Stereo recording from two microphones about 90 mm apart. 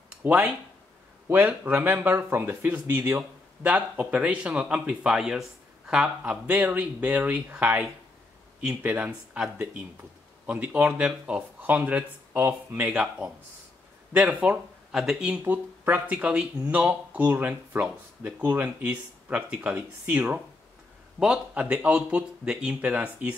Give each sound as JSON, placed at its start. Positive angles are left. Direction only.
{"t": 0.2, "sound": "speech", "side_deg": -15}
{"t": 12.8, "sound": "speech", "side_deg": -10}
{"t": 14.9, "sound": "speech", "side_deg": -5}
{"t": 15.4, "sound": "speech", "side_deg": -20}